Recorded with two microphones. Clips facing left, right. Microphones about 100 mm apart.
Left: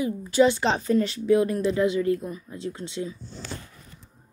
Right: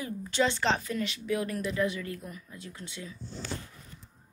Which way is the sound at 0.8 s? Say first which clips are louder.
Left 11 dB; 35° left (ahead or behind).